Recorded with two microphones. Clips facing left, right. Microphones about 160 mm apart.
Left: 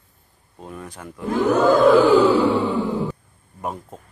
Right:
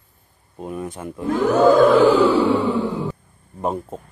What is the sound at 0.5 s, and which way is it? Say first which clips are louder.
Speech: right 7 dB; 15° right (ahead or behind).